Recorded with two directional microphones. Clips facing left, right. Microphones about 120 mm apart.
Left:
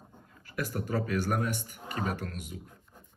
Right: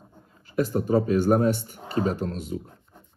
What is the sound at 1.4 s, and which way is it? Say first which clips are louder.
Speech: right 10 dB; 30° right (ahead or behind).